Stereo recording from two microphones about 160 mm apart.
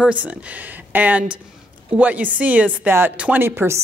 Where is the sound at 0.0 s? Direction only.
10° right (ahead or behind).